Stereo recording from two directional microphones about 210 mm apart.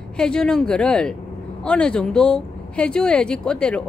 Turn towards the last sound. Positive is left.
turn(degrees=5)  # may be behind; listen again after turning